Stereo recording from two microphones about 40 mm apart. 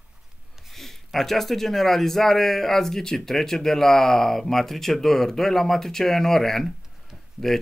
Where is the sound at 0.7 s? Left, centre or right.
Centre.